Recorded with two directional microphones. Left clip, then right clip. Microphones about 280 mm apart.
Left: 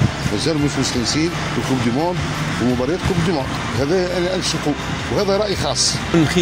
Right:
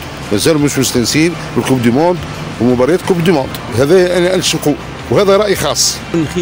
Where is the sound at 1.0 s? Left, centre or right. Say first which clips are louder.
Right 8 dB; right.